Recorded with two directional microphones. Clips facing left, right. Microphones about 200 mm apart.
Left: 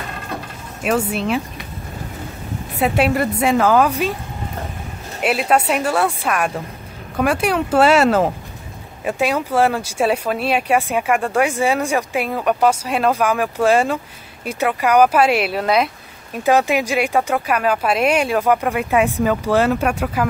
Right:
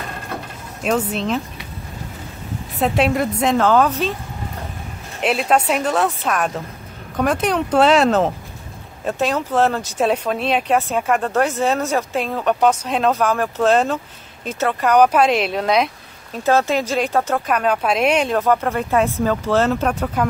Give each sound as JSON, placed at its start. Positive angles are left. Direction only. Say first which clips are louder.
{"t": 0.8, "sound": "speech", "louder": "left 1 dB", "side_deg": 10}
{"t": 2.8, "sound": "speech", "louder": "left 1 dB", "side_deg": 5}
{"t": 5.2, "sound": "speech", "louder": "even", "side_deg": 5}